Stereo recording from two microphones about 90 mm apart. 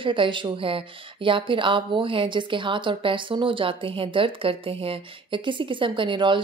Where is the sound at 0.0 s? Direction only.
65° right (ahead or behind).